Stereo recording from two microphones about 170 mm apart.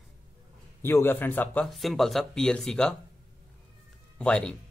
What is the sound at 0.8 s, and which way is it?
Speech, 10° left (ahead or behind).